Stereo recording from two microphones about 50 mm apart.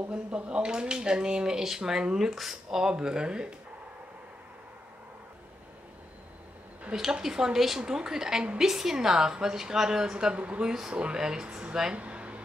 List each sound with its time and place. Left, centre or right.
0.1 s speech: centre
7.0 s speech: centre
10.7 s speech: centre
12.0 s air conditioning: right